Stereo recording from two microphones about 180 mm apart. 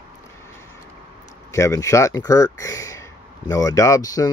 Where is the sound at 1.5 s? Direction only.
15° left (ahead or behind).